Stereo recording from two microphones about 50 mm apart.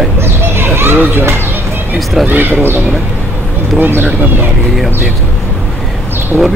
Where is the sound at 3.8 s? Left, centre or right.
Right.